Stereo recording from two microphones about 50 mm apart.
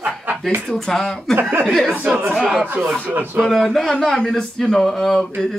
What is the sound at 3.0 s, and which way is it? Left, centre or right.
Speech, right.